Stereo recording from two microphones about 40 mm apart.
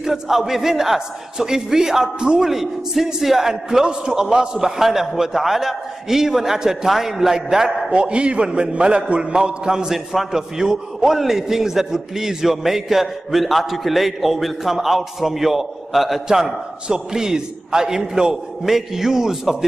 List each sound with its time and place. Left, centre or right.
0.0 s a man's voice: centre
3.8 s a man's voice: centre
7.9 s a man's voice: right